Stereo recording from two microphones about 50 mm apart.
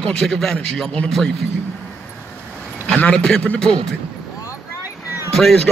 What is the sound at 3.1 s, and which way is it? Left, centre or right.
Speech, centre.